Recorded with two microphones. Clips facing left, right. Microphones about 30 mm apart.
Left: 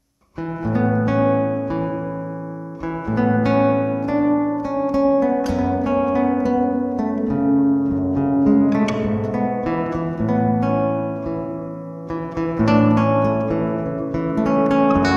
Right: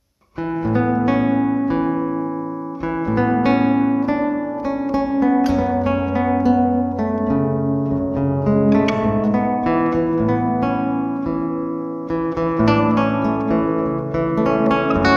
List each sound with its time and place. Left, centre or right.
0.7 s music: centre
3.1 s guitar: centre
4.3 s music: centre
5.9 s guitar: centre
7.0 s music: centre
8.2 s music: centre
8.5 s music: centre
9.3 s guitar: centre
12.4 s music: centre